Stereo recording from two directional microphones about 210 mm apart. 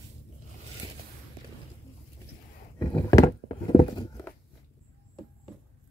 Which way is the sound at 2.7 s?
15° left (ahead or behind).